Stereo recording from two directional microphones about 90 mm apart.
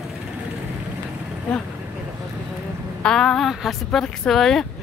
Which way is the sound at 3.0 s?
5° left (ahead or behind).